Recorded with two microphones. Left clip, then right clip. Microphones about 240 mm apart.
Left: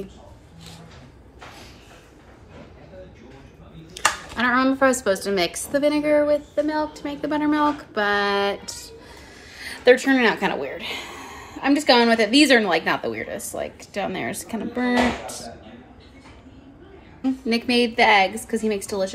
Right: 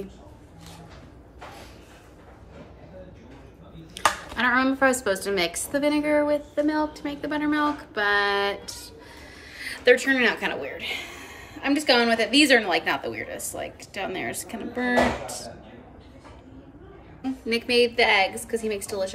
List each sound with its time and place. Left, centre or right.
3.9 s a woman's voice: centre
17.2 s speech: centre